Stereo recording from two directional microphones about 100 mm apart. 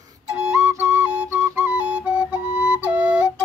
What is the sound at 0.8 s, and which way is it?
Flute, 15° right (ahead or behind).